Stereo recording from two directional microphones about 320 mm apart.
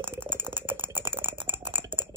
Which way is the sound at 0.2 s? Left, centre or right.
Centre.